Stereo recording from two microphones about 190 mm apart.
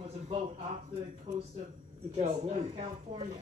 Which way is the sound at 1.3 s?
30° right (ahead or behind).